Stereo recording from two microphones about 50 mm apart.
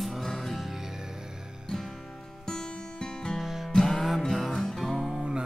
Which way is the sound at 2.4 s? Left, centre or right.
Centre.